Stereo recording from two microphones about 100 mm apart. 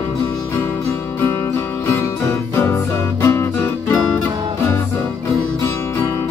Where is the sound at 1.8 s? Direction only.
25° left (ahead or behind).